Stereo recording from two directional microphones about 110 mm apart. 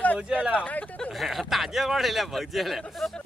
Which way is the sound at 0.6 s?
10° left (ahead or behind).